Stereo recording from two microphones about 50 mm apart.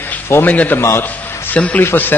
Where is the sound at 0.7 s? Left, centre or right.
Left.